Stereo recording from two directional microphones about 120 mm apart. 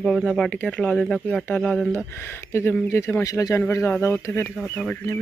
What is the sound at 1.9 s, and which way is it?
Speech, 20° left (ahead or behind).